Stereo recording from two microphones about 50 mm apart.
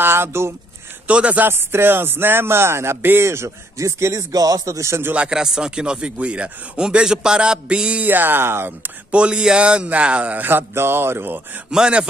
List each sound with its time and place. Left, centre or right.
0.0 s a sound: right
1.0 s a man's voice: right
1.4 s music: right
3.1 s speech: right
5.3 s a man's voice: centre
8.0 s music: right
9.1 s a man's voice: right
10.7 s music: right
11.7 s a man's voice: centre